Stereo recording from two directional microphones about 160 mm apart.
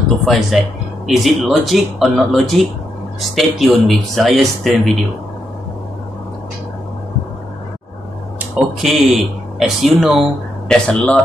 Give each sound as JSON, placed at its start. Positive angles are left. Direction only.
{"t": 0.2, "sound": "speech", "side_deg": 0}
{"t": 8.5, "sound": "speech", "side_deg": 0}